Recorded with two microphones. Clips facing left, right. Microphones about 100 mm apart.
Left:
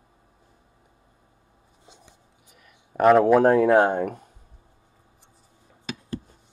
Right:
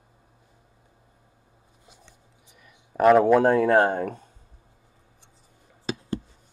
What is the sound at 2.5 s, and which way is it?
Speech, centre (ahead or behind).